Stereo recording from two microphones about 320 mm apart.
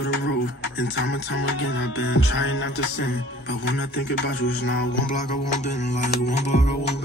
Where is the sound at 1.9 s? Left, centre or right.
Left.